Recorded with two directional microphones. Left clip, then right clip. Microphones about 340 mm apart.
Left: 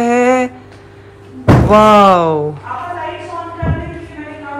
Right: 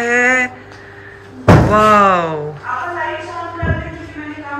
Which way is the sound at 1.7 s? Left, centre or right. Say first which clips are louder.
Left 6 dB; centre.